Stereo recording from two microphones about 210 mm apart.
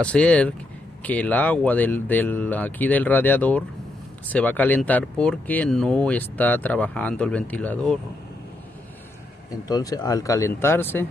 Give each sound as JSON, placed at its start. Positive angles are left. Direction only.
{"t": 0.0, "sound": "speech", "side_deg": 5}
{"t": 9.7, "sound": "speech", "side_deg": 20}